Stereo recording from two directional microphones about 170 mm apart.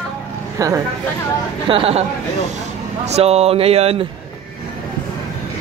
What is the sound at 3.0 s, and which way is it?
Speech, 40° right (ahead or behind).